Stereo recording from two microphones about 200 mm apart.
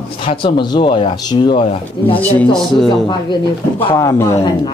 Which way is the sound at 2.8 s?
25° left (ahead or behind).